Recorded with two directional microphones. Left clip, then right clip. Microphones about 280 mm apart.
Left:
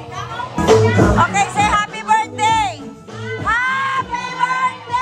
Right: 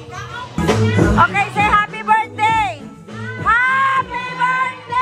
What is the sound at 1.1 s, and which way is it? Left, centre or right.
Music, centre.